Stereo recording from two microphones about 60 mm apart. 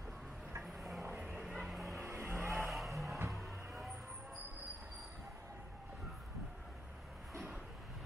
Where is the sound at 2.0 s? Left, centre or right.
Right.